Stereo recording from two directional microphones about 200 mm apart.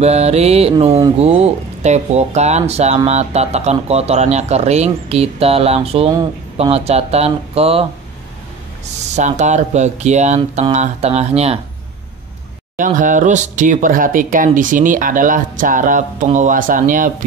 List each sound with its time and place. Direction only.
0.0 s speech: 30° right (ahead or behind)
9.0 s speech: 35° right (ahead or behind)
12.7 s speech: 40° right (ahead or behind)